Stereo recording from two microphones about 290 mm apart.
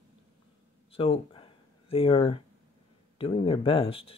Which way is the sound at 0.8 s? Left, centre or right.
Centre.